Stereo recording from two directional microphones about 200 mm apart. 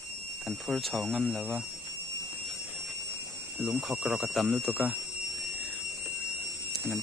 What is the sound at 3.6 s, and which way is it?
Speech, 5° right (ahead or behind).